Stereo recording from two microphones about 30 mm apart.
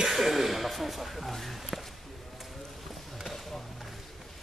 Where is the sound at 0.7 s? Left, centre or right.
Centre.